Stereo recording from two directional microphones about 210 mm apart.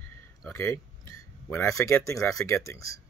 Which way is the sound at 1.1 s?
15° left (ahead or behind).